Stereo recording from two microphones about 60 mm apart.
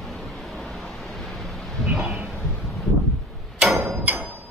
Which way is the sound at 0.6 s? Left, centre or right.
Centre.